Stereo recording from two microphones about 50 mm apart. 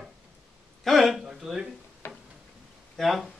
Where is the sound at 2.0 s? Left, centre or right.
Left.